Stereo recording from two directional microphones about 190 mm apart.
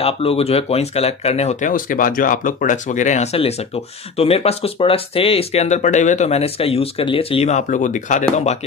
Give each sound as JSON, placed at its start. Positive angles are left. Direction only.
{"t": 0.0, "sound": "speech", "side_deg": 30}